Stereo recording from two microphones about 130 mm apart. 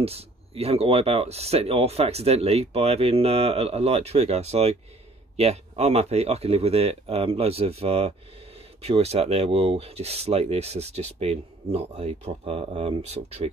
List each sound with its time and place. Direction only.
0.0 s speech: 50° right (ahead or behind)